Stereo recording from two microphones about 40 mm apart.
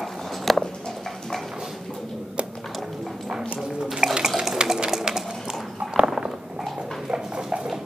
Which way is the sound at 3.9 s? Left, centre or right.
Centre.